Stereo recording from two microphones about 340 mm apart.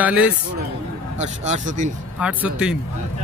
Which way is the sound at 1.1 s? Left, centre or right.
Centre.